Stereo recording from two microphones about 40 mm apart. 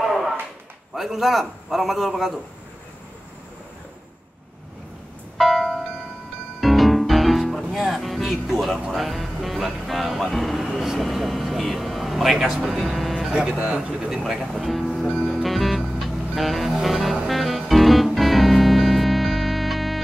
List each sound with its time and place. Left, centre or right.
0.0 s a sound: centre
0.9 s a man's voice: centre
5.4 s music: centre
8.9 s speech: centre
10.6 s vehicle: centre
12.6 s speech: centre
13.3 s speech: right
13.9 s a man's voice: centre
15.1 s music: centre